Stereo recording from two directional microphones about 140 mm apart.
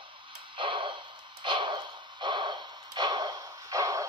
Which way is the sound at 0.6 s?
35° right (ahead or behind).